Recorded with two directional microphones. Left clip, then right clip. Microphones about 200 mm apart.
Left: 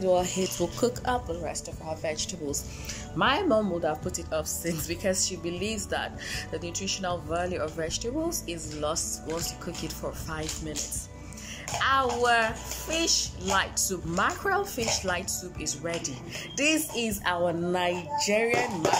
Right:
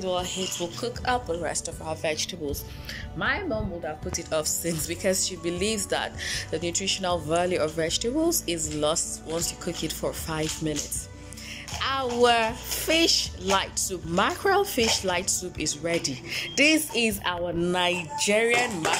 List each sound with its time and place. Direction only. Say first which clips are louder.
0.0 s speech: left 3 dB; 20° left (ahead or behind)
1.4 s a woman's voice: right 4 dB; centre (ahead or behind)
3.2 s speech: left 4 dB; 15° left (ahead or behind)
4.3 s a woman's voice: right 4 dB; centre (ahead or behind)
11.8 s a woman's voice: right 1 dB; 5° right (ahead or behind)